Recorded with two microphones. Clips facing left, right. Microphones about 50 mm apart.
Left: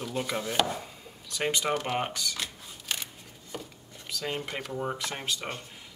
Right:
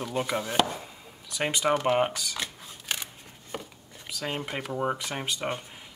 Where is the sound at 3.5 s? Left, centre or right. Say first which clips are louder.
Right 2 dB; right.